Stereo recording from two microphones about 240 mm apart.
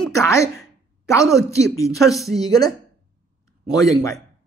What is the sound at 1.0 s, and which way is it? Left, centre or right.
A woman's voice, centre.